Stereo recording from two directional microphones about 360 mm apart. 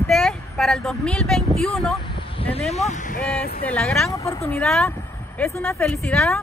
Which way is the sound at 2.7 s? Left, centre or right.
Centre.